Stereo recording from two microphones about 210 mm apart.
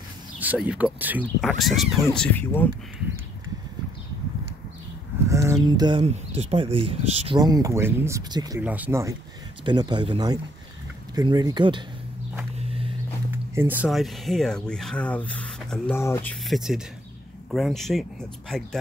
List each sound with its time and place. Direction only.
0.4 s speech: 5° right (ahead or behind)
1.2 s speech: 5° left (ahead or behind)
5.3 s speech: 15° right (ahead or behind)
8.6 s speech: 10° right (ahead or behind)
9.7 s speech: 20° right (ahead or behind)
12.5 s walk: 25° right (ahead or behind)
13.6 s speech: 10° right (ahead or behind)